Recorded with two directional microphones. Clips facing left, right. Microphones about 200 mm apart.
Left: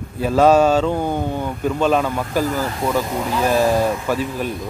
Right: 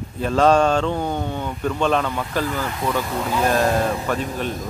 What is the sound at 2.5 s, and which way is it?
Speech, 35° left (ahead or behind).